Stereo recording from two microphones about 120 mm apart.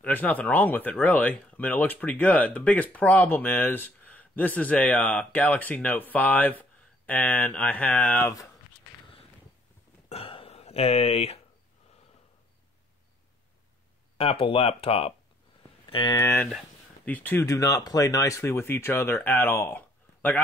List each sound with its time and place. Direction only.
0.0 s speech: 15° left (ahead or behind)
10.0 s a sound: 50° left (ahead or behind)
14.1 s speech: 50° left (ahead or behind)
15.9 s speech: 40° left (ahead or behind)
16.2 s speech: 25° left (ahead or behind)
17.0 s speech: 15° left (ahead or behind)